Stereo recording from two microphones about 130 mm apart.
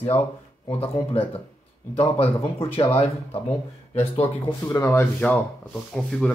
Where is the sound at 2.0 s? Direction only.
45° left (ahead or behind).